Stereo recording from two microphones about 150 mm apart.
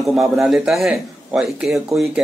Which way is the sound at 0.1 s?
5° right (ahead or behind).